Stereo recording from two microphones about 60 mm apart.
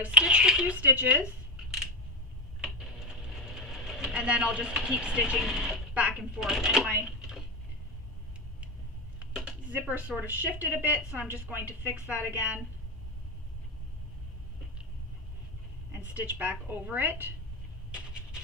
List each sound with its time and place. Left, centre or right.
0.0 s speech: centre
0.7 s a woman's voice: right
2.6 s sewing machine: centre
5.4 s speech: centre
5.9 s speech: right
6.3 s speech: centre
7.2 s a sound: centre
9.2 s a sound: centre
9.7 s a woman's voice: right
16.1 s a woman's voice: right
17.9 s a sound: centre